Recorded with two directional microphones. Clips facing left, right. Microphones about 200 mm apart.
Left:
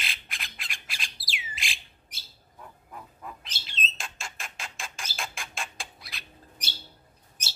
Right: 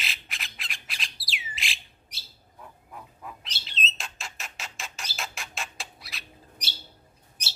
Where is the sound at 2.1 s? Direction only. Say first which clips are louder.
Right 1 dB; 50° left (ahead or behind).